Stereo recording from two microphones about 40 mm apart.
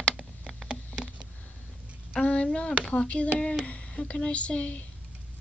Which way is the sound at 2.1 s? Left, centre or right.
Left.